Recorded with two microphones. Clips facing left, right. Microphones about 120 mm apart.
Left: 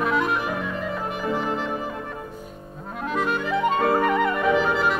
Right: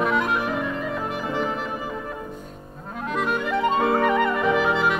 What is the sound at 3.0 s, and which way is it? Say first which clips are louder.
Clarinet: even; centre (ahead or behind).